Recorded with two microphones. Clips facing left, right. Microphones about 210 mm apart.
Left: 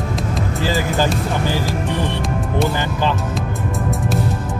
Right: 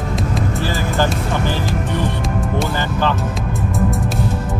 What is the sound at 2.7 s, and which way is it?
Speech, 15° left (ahead or behind).